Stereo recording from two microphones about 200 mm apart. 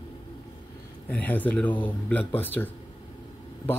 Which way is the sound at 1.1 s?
10° left (ahead or behind).